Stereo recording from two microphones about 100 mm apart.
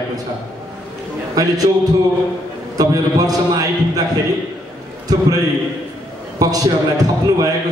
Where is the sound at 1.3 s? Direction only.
35° right (ahead or behind).